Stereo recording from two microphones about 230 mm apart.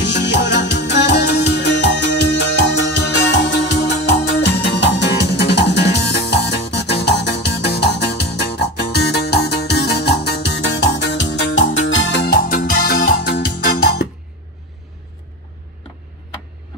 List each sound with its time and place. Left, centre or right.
0.0 s music: left